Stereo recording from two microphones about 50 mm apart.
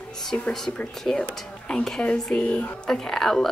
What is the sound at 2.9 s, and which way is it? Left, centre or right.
Speech, centre.